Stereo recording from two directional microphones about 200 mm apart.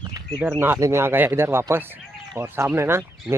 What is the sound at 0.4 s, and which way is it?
Speech, 10° right (ahead or behind).